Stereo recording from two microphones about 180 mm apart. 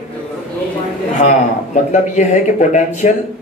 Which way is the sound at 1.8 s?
40° left (ahead or behind).